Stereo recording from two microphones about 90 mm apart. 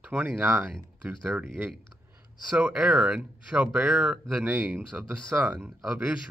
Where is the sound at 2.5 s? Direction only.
10° right (ahead or behind).